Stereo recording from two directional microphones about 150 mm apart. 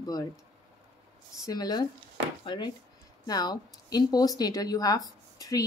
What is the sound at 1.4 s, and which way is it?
Speech, 25° left (ahead or behind).